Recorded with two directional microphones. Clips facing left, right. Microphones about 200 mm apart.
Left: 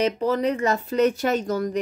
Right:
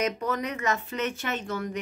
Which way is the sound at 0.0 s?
30° left (ahead or behind).